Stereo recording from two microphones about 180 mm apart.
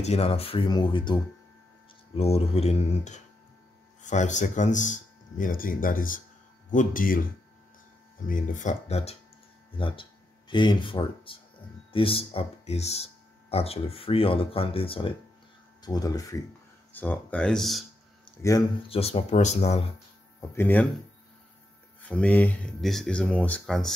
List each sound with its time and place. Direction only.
0.0 s speech: 35° left (ahead or behind); by 7.2 s 50° left (ahead or behind)
8.3 s speech: 45° left (ahead or behind); by 17.8 s centre (ahead or behind)
18.9 s speech: 35° left (ahead or behind)
20.3 s speech: 10° left (ahead or behind)
22.0 s speech: 5° left (ahead or behind)